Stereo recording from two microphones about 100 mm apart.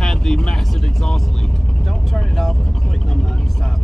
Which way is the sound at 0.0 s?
5° left (ahead or behind).